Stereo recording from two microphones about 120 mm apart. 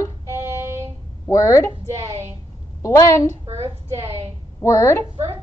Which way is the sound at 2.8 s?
25° left (ahead or behind).